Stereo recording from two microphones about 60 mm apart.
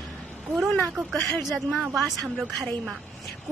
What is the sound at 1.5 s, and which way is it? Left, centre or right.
Speech, centre.